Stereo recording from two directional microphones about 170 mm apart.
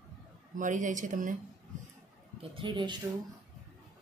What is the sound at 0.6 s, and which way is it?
Speech, 50° right (ahead or behind).